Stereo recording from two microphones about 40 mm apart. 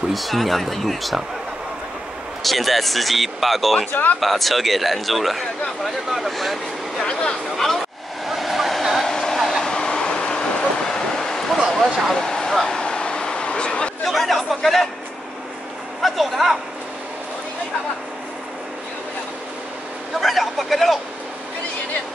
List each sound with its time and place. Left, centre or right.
0.1 s speech: centre
2.4 s speech: centre
3.9 s speech: left
4.2 s speech: centre
7.0 s speech: centre
7.5 s speech: centre
8.3 s waterfall: centre
9.0 s a sound: centre
9.7 s vehicle: centre
12.1 s a sound: centre
14.0 s speech: centre
16.0 s speech: centre
20.2 s speech: centre